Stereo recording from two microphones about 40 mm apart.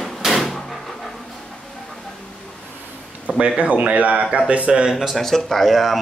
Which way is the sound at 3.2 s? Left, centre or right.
Right.